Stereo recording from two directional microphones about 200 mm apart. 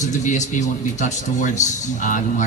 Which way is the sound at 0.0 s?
35° left (ahead or behind).